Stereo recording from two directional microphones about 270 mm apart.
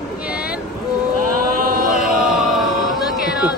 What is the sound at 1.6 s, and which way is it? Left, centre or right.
Chant, right.